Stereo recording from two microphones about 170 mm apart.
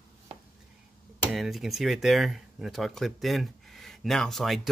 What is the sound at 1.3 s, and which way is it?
Speech, centre (ahead or behind).